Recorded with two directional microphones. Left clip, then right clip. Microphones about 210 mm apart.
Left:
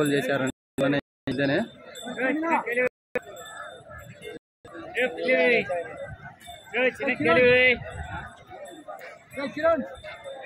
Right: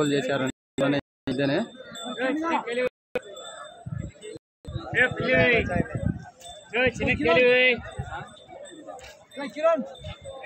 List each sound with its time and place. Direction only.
0.0 s speech: centre (ahead or behind)
4.9 s a man's voice: 20° right (ahead or behind)
6.7 s a man's voice: 35° right (ahead or behind)
9.4 s a man's voice: 50° right (ahead or behind)